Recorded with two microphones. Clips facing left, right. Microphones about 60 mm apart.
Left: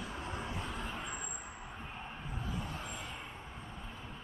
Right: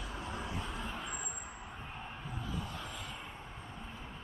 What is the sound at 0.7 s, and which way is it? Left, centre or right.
Vehicle, centre.